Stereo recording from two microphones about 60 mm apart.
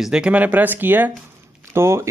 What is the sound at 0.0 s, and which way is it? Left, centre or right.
Speech, centre.